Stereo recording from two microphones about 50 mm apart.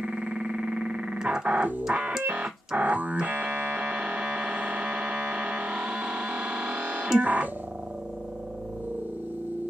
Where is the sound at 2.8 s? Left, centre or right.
Right.